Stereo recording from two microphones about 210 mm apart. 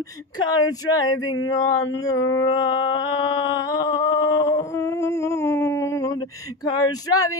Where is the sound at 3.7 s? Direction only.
15° left (ahead or behind).